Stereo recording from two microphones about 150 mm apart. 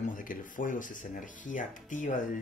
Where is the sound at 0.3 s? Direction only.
65° left (ahead or behind).